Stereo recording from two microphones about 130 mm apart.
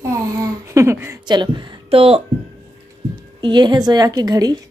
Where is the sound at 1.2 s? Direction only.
35° right (ahead or behind).